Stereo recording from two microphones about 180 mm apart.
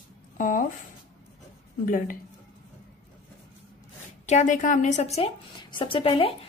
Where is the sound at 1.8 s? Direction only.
50° left (ahead or behind).